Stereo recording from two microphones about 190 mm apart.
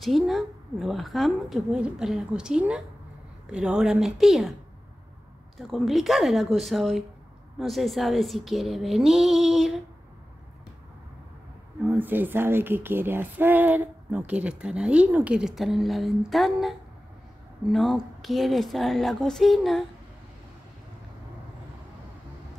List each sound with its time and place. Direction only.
0.0 s a woman's voice: centre (ahead or behind)
5.6 s a woman's voice: centre (ahead or behind)
11.8 s a woman's voice: 10° right (ahead or behind)